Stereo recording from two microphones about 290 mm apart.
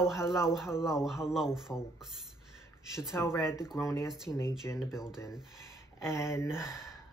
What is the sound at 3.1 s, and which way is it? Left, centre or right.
Speech, centre.